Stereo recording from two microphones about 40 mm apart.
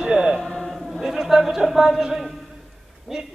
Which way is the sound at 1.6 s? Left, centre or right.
Centre.